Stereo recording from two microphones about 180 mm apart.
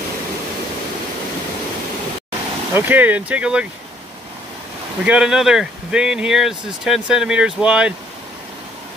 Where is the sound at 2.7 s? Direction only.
10° right (ahead or behind).